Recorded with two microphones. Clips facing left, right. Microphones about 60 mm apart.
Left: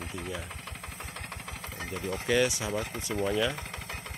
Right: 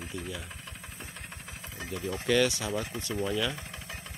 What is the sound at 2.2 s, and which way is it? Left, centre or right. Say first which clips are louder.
Speech: right 1 dB; centre.